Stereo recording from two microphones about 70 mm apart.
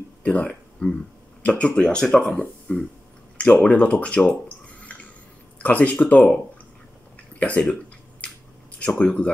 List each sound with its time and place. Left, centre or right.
0.2 s speech: centre
3.3 s speech: centre
5.6 s speech: left
7.3 s speech: centre
8.7 s speech: centre